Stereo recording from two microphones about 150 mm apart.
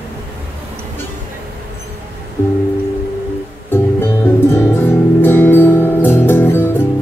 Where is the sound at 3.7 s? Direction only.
15° left (ahead or behind).